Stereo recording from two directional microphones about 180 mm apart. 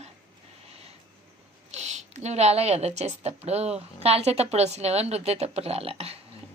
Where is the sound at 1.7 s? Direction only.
40° right (ahead or behind).